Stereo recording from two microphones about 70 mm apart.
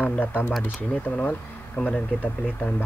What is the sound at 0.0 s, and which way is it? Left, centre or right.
Speech, left.